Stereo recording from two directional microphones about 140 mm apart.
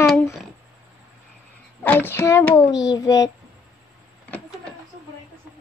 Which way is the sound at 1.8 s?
15° left (ahead or behind).